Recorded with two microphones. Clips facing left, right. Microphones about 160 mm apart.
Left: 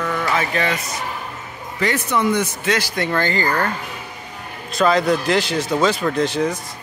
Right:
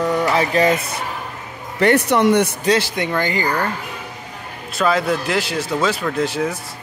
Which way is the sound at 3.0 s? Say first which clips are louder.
Even; 15° right (ahead or behind).